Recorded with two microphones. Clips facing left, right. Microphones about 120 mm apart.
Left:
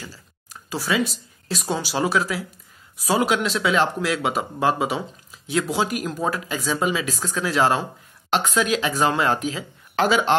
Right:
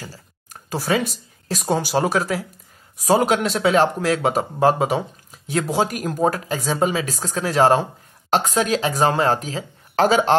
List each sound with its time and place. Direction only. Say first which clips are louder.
0.0 s speech: right 2 dB; 45° right (ahead or behind)